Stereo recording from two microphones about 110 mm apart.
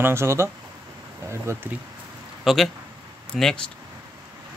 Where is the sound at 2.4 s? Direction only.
Centre (ahead or behind).